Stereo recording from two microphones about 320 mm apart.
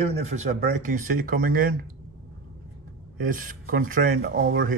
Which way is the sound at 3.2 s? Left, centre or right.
Right.